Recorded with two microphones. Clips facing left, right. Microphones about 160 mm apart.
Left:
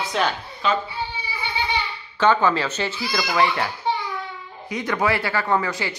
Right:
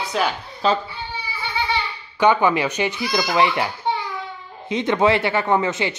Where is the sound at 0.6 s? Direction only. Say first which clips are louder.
Right 3 dB; 35° right (ahead or behind).